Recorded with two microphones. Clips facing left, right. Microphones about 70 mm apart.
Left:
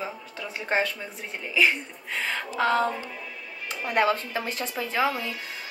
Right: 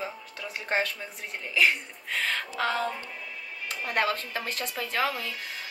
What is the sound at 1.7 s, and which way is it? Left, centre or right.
Speech, centre.